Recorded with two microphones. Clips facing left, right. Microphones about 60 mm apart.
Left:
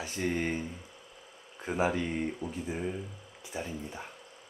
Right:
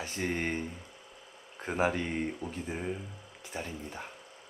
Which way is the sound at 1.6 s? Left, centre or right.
Right.